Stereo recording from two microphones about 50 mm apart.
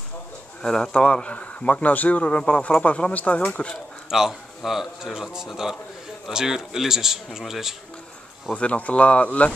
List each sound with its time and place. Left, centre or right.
0.6 s speech: centre
4.1 s a man's voice: centre
8.5 s speech: left